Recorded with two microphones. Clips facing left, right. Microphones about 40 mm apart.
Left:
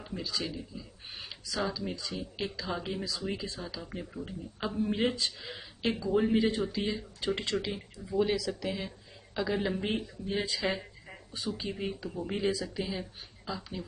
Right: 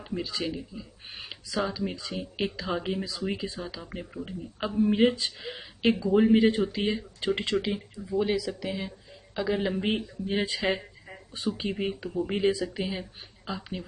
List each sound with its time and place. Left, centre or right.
0.0 s speech: right
0.7 s speech: centre
4.9 s speech: right
7.3 s a woman's voice: centre
9.8 s speech: right